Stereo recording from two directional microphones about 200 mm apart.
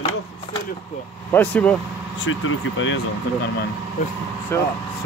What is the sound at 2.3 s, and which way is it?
Speech, 85° left.